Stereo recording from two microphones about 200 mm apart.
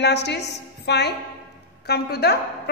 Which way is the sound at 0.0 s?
55° left (ahead or behind).